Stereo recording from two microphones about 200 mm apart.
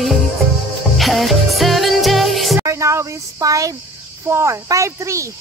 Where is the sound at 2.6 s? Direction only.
15° right (ahead or behind).